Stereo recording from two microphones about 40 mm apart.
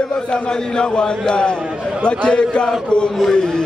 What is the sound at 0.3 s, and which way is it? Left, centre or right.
Speech, left.